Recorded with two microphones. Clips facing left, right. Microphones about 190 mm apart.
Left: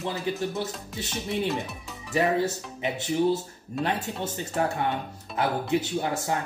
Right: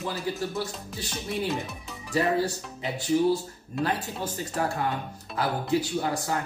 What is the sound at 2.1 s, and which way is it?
Speech, 20° left (ahead or behind).